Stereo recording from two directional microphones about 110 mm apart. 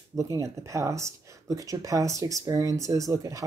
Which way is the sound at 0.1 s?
30° right (ahead or behind).